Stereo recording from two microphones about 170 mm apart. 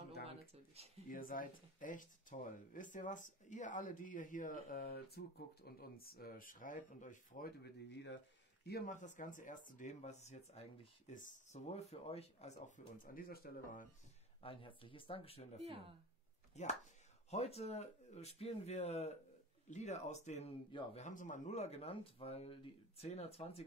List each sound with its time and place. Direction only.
0.3 s a sound: 35° right (ahead or behind)
1.0 s speech: 55° left (ahead or behind); by 8.2 s 90° left
8.6 s speech: 65° left (ahead or behind)
8.9 s speech: 45° left (ahead or behind)
14.4 s speech: 30° left (ahead or behind)